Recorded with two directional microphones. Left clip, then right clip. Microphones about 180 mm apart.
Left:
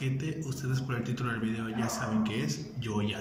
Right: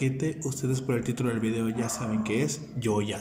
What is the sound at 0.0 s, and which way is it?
A man's voice, 35° right (ahead or behind).